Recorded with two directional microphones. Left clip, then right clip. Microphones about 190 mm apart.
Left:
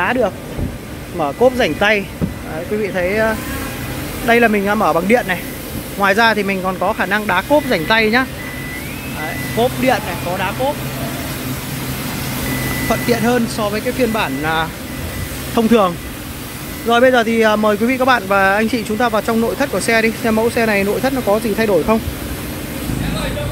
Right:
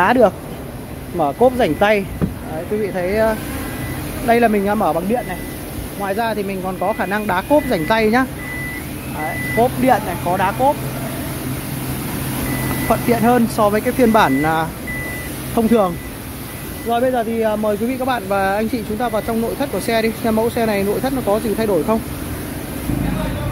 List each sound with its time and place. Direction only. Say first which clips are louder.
0.0 s speech: right 3 dB; 20° right (ahead or behind)
1.1 s speech: even; 5° left (ahead or behind)
1.6 s speech: even; 10° right (ahead or behind)
4.9 s speech: left 6 dB; 20° left (ahead or behind)
7.0 s speech: left 3 dB; 5° right (ahead or behind)
9.6 s speech: even; 20° right (ahead or behind)
13.1 s speech: right 1 dB; 15° right (ahead or behind)
13.6 s speech: right 3 dB; 25° right (ahead or behind)
14.4 s speech: even; 10° right (ahead or behind)
16.9 s speech: left 6 dB; 15° left (ahead or behind)